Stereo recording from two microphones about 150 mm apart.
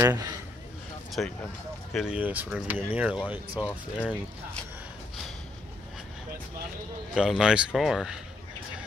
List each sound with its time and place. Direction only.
0.0 s speech: 15° right (ahead or behind)
1.2 s speech: 5° left (ahead or behind)
3.6 s speech: 10° left (ahead or behind)
7.2 s speech: 5° right (ahead or behind)